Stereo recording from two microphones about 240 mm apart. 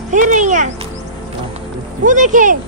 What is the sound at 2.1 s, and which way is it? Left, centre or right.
Speech, right.